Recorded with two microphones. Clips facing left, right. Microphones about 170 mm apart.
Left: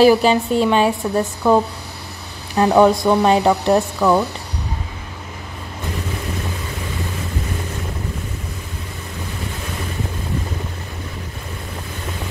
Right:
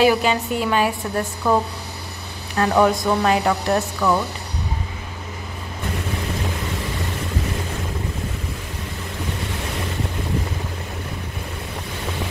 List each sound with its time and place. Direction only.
0.0 s a woman's voice: 35° left (ahead or behind)
1.4 s speech: 10° left (ahead or behind)
2.5 s speech: 20° left (ahead or behind)